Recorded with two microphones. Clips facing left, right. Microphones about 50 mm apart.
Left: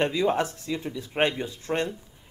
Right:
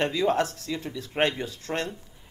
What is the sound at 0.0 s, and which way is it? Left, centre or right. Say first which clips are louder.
A man's voice: even; centre.